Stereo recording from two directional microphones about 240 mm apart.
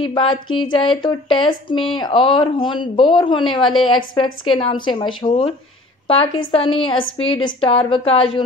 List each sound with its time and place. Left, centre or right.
0.0 s speech: left